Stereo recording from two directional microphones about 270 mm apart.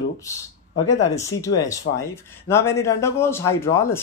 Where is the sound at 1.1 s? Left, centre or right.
Centre.